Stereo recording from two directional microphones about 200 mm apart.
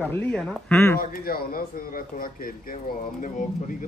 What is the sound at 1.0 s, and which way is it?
Speech, 45° left (ahead or behind).